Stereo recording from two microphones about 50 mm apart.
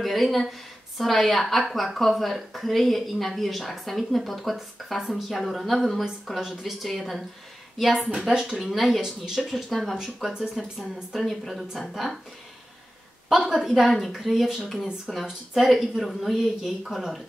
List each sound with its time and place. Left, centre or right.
0.0 s speech: centre
8.1 s a woman's voice: centre
9.2 s a woman's voice: centre
9.5 s speech: centre
10.5 s speech: centre
13.3 s a woman's voice: centre
15.5 s speech: centre